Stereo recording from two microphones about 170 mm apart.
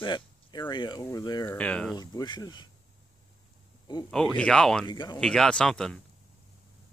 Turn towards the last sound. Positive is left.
turn(degrees=5)  # may be behind; listen again after turning